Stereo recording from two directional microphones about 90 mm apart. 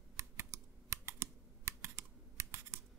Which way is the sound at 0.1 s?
30° right (ahead or behind).